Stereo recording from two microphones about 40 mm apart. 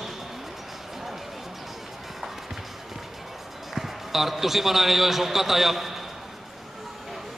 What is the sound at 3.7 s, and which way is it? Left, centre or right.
A man's voice, centre.